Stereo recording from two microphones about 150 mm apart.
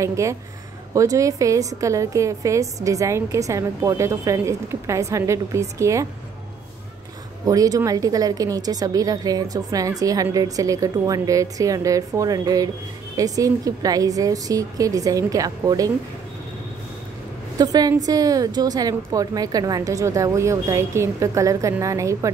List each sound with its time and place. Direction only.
0.0 s a woman's voice: 20° right (ahead or behind)
7.4 s a woman's voice: 25° right (ahead or behind)
17.6 s a woman's voice: 25° right (ahead or behind)